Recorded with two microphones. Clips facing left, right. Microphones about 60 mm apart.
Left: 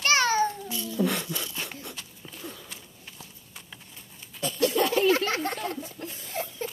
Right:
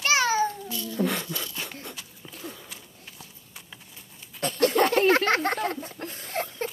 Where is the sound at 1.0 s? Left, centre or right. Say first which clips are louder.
Even; centre.